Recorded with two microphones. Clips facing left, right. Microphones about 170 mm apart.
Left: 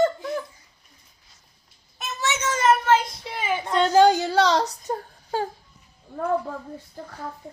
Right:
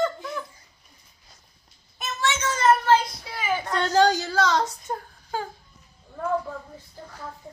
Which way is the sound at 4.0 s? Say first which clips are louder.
Left 3 dB; 25° left (ahead or behind).